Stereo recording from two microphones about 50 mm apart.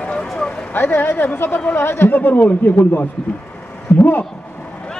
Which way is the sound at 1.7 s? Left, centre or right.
Left.